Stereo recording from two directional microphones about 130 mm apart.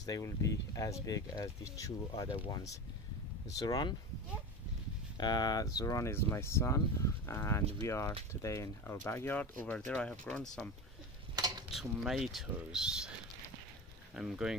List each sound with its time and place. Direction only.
0.0 s speech: 25° left (ahead or behind)
5.1 s speech: 35° left (ahead or behind); by 10.4 s 10° left (ahead or behind)
11.3 s a sound: 30° right (ahead or behind)
11.7 s speech: 5° right (ahead or behind)
14.1 s speech: 5° right (ahead or behind)